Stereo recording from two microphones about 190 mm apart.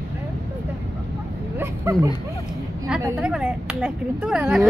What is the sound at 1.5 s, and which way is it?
Speech, 15° right (ahead or behind).